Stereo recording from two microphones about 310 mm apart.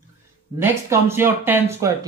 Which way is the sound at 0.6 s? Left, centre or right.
Centre.